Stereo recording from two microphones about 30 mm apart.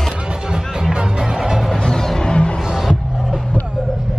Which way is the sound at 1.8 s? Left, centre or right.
Left.